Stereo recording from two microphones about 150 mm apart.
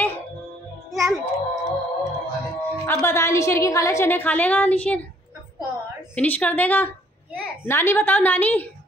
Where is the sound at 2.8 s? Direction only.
15° left (ahead or behind).